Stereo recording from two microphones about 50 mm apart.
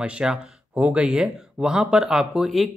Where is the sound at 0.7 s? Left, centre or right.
Right.